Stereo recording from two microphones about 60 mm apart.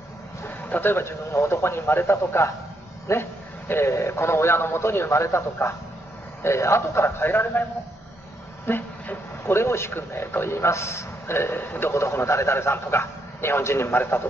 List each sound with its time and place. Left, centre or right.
0.5 s a man's voice: left
8.6 s a sound: left
9.5 s a man's voice: left
11.9 s a man's voice: left